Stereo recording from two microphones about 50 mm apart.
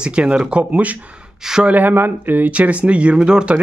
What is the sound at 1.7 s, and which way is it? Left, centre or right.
Speech, right.